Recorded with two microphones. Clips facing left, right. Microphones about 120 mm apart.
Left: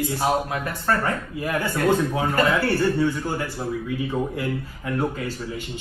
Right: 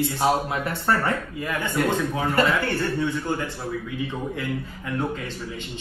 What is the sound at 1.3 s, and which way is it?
A man's voice, 5° left (ahead or behind).